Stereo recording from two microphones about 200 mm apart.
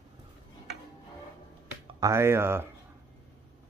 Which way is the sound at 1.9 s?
15° right (ahead or behind).